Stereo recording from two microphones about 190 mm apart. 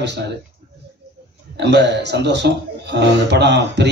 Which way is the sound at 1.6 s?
65° right (ahead or behind).